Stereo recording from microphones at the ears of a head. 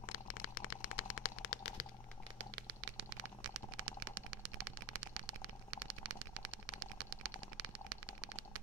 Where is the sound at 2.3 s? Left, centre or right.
Right.